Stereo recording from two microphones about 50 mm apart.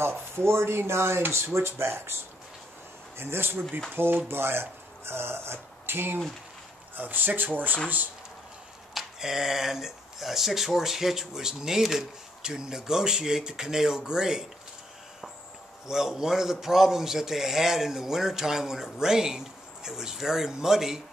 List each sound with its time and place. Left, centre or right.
0.0 s speech: right
3.2 s speech: right
7.0 s speech: right
8.9 s speech: centre
15.9 s speech: centre